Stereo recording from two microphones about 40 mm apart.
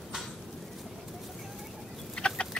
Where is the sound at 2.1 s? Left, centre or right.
Left.